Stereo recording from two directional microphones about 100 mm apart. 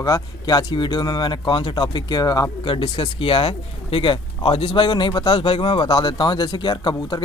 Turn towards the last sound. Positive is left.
turn(degrees=45)  # may be behind; listen again after turning